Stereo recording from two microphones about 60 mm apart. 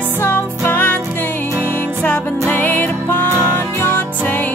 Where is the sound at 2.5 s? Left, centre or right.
Left.